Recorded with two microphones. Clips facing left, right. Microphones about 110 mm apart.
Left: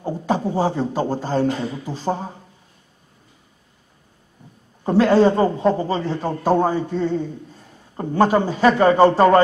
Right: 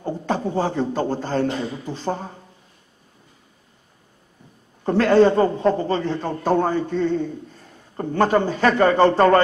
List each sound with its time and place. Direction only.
0.0 s a man's voice: 10° left (ahead or behind)
4.8 s a man's voice: 10° left (ahead or behind)